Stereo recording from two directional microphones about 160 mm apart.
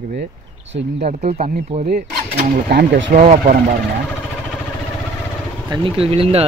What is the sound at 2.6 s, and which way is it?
Speech, 85° right.